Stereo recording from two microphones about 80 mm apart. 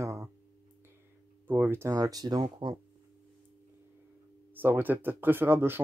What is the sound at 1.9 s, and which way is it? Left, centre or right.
Speech, right.